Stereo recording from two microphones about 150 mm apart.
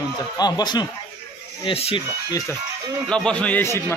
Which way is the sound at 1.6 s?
40° left (ahead or behind).